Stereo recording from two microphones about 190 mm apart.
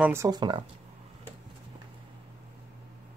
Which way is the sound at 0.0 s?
15° right (ahead or behind).